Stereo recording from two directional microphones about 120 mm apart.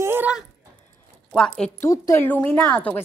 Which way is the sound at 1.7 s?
25° left (ahead or behind).